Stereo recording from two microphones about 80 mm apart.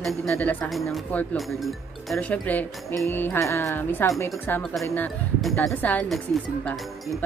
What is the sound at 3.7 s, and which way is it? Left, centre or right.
Speech, left.